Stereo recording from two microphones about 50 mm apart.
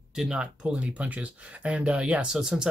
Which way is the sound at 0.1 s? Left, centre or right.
Centre.